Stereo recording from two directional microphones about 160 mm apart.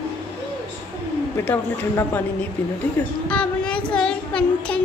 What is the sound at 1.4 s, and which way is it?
Child singing, 10° left (ahead or behind).